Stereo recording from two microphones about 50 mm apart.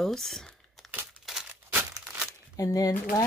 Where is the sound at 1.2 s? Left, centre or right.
Centre.